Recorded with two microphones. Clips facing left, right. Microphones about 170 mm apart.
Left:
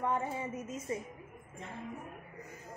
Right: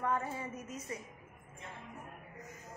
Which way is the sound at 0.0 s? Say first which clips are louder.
Left 2 dB; 20° left (ahead or behind).